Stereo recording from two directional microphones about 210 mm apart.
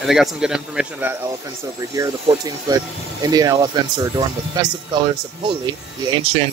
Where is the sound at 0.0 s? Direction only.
Centre (ahead or behind).